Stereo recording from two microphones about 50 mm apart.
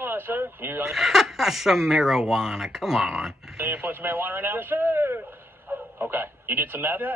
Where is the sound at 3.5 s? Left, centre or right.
Right.